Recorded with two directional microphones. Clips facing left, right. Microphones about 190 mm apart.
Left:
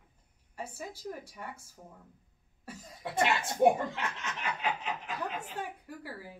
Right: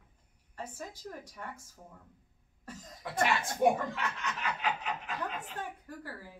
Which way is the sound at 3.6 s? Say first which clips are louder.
Left 3 dB; 25° left (ahead or behind).